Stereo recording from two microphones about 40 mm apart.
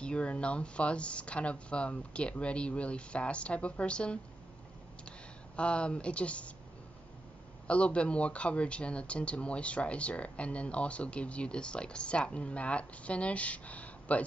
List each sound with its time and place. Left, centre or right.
0.0 s speech: left
5.6 s speech: left
7.6 s speech: left